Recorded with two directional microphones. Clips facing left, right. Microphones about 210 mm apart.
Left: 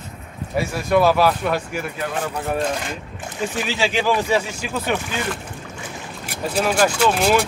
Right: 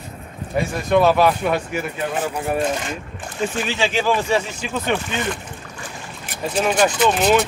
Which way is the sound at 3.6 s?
5° left (ahead or behind).